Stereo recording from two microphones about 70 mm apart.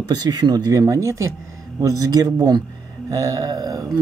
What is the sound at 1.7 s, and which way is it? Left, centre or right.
Speech, right.